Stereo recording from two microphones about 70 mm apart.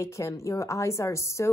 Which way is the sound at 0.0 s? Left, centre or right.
Left.